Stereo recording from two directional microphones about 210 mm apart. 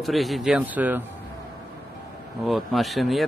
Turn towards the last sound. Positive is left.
turn(degrees=0)  # may be behind; listen again after turning